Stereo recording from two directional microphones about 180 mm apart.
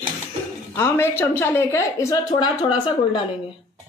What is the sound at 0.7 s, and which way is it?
A woman's voice, 15° left (ahead or behind).